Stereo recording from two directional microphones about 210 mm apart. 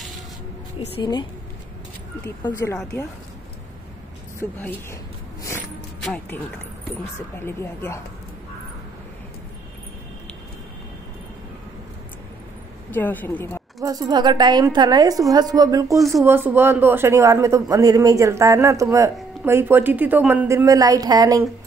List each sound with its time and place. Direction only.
0.7 s a woman's voice: 25° left (ahead or behind)
2.4 s speech: 15° left (ahead or behind)
4.4 s speech: 10° left (ahead or behind)
6.0 s speech: 5° left (ahead or behind)
12.9 s a woman's voice: 10° left (ahead or behind)
13.8 s a woman's voice: 20° right (ahead or behind)